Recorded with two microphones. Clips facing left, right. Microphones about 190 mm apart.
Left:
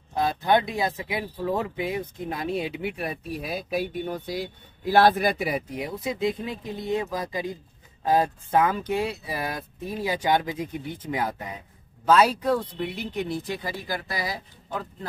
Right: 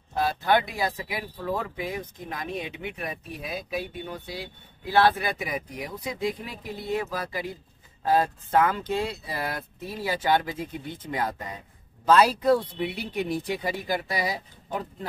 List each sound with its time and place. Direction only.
0.1 s speech: 20° left (ahead or behind); by 12.5 s centre (ahead or behind)
12.7 s speech: 10° right (ahead or behind)